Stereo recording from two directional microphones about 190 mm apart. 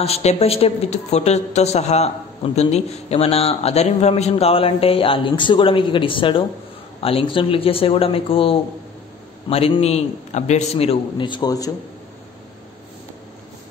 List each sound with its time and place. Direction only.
0.0 s a woman's voice: 35° left (ahead or behind)